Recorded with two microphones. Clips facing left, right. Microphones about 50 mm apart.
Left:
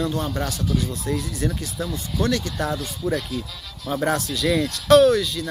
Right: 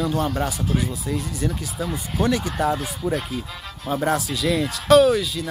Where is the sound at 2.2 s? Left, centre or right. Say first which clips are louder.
Right 2 dB; centre.